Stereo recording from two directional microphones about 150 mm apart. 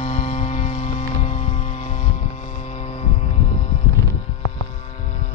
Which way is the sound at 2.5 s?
50° left (ahead or behind).